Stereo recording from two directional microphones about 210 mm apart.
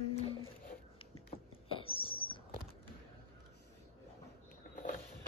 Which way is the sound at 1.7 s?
25° left (ahead or behind).